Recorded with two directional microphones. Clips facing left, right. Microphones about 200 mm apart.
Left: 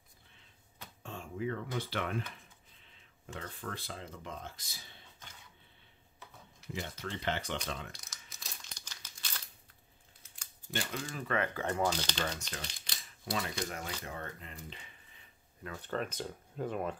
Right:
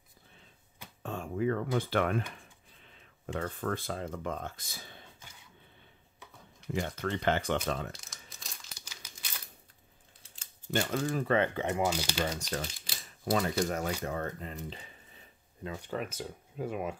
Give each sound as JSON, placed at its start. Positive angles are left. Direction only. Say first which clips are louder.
{"t": 1.0, "sound": "a sound", "louder": "right 7 dB", "side_deg": -55}
{"t": 1.8, "sound": "speech", "louder": "right 7 dB", "side_deg": -50}
{"t": 3.3, "sound": "speech", "louder": "right 9 dB", "side_deg": -50}
{"t": 6.7, "sound": "speech", "louder": "right 7 dB", "side_deg": -55}
{"t": 7.9, "sound": "crumpling", "louder": "right 5 dB", "side_deg": 0}
{"t": 10.7, "sound": "speech", "louder": "right 8 dB", "side_deg": -45}
{"t": 11.8, "sound": "speech", "louder": "right 2 dB", "side_deg": -10}
{"t": 12.4, "sound": "speech", "louder": "right 8 dB", "side_deg": -40}
{"t": 15.6, "sound": "speech", "louder": "right 1 dB", "side_deg": -15}